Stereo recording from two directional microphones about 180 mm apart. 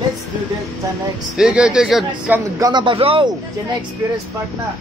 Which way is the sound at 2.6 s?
25° right (ahead or behind).